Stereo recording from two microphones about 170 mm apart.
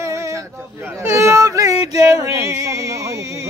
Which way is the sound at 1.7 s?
35° left (ahead or behind).